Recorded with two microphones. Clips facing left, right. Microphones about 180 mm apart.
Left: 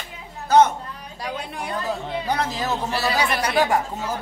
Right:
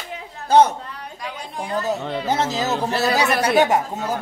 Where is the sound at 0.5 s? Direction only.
35° right (ahead or behind).